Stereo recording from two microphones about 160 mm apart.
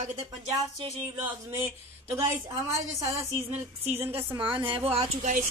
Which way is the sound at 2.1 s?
15° right (ahead or behind).